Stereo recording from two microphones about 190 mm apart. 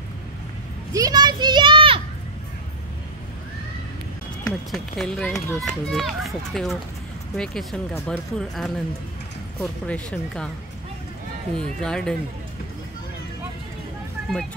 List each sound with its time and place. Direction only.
0.9 s children playing: 20° right (ahead or behind)
4.6 s a child's voice: centre (ahead or behind)
11.5 s a child's voice: 5° left (ahead or behind)